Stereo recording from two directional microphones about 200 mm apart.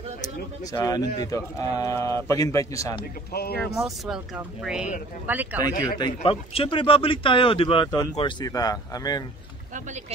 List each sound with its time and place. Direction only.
0.7 s a man's voice: 20° left (ahead or behind)
3.3 s speech: 55° left (ahead or behind)
3.8 s speech: centre (ahead or behind)
5.7 s a man's voice: 20° left (ahead or behind)